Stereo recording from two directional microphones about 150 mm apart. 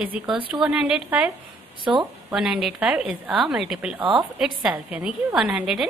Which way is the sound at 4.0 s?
35° right (ahead or behind).